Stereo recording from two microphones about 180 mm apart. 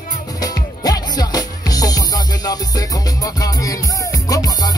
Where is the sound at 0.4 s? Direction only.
20° left (ahead or behind).